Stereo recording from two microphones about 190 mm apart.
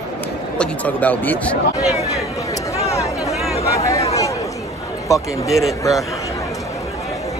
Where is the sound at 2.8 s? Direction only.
15° left (ahead or behind).